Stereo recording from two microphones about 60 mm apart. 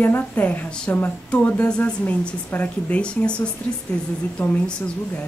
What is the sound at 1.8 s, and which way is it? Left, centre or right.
Speech, left.